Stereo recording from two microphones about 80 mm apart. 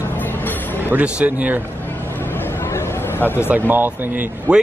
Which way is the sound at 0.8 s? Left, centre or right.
Centre.